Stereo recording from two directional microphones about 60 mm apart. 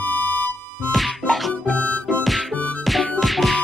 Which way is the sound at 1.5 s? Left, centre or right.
Centre.